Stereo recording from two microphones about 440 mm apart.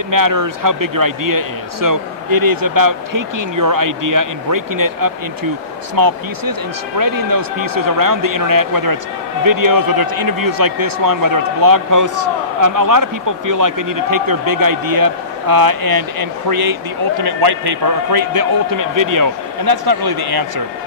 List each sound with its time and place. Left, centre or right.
0.1 s a man's voice: right